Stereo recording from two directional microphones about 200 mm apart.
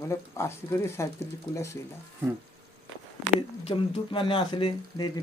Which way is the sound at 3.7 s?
25° left (ahead or behind).